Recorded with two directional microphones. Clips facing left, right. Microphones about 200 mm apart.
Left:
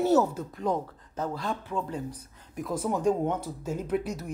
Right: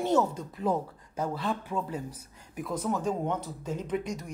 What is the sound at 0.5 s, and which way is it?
Speech, 5° right (ahead or behind).